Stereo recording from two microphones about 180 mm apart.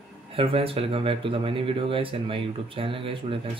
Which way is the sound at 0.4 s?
30° right (ahead or behind).